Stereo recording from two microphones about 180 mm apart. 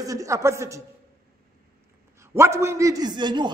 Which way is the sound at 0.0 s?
20° right (ahead or behind).